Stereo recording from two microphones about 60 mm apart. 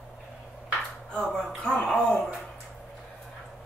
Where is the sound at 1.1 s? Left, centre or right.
Centre.